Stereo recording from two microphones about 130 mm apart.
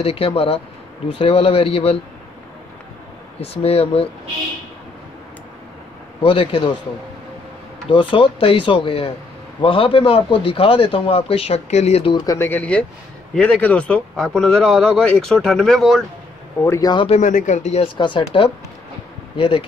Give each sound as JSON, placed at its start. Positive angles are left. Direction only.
{"t": 0.0, "sound": "speech", "side_deg": 50}
{"t": 3.3, "sound": "speech", "side_deg": 50}
{"t": 6.2, "sound": "speech", "side_deg": 45}
{"t": 7.9, "sound": "speech", "side_deg": 40}
{"t": 12.0, "sound": "speech", "side_deg": 40}
{"t": 12.4, "sound": "a man's voice", "side_deg": 15}
{"t": 16.6, "sound": "speech", "side_deg": 20}
{"t": 16.9, "sound": "speech", "side_deg": 45}
{"t": 17.2, "sound": "speech", "side_deg": 70}
{"t": 17.9, "sound": "speech", "side_deg": 35}
{"t": 19.3, "sound": "speech", "side_deg": 40}